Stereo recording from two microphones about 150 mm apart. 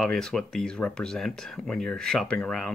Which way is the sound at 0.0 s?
Centre (ahead or behind).